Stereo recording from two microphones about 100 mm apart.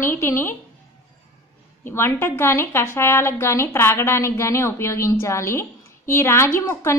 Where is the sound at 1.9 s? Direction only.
25° left (ahead or behind).